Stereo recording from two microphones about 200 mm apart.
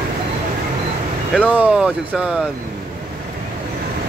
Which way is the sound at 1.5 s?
5° right (ahead or behind).